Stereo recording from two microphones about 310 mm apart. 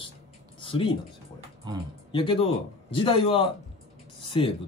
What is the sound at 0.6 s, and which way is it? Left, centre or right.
Speech, centre.